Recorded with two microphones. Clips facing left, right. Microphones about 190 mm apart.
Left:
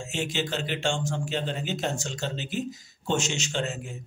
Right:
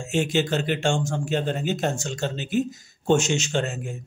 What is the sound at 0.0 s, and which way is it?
Speech, 50° right (ahead or behind).